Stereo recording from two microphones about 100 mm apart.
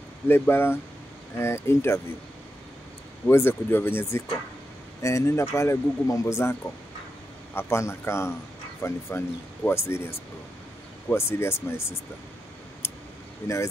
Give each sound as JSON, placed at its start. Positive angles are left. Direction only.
{"t": 0.3, "sound": "speech", "side_deg": 25}
{"t": 3.3, "sound": "speech", "side_deg": 25}
{"t": 7.5, "sound": "speech", "side_deg": 25}
{"t": 11.1, "sound": "speech", "side_deg": 25}
{"t": 13.4, "sound": "speech", "side_deg": 25}